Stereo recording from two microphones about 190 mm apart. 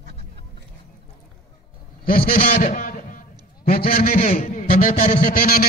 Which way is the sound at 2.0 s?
50° left (ahead or behind).